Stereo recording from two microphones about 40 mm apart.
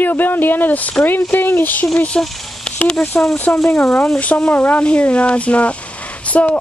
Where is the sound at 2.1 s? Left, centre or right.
Left.